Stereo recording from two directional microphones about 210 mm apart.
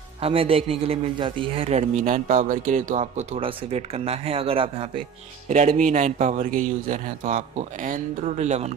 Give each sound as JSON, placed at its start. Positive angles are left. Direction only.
{"t": 0.2, "sound": "a man's voice", "side_deg": -25}